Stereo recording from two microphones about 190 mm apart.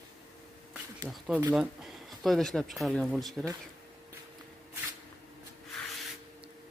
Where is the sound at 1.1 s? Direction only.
10° right (ahead or behind).